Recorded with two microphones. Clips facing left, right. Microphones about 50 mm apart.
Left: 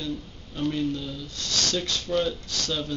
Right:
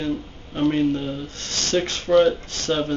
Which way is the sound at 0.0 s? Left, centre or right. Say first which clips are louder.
Right 7 dB; right.